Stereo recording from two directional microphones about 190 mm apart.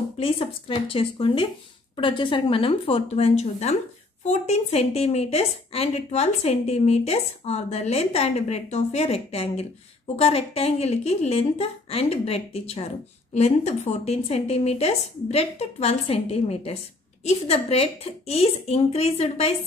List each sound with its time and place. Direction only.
0.2 s a woman's voice: 30° left (ahead or behind)